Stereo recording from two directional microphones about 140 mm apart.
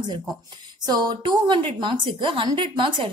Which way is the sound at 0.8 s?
30° right (ahead or behind).